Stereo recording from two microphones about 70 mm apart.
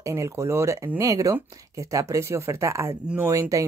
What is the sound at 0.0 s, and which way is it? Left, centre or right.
Speech, right.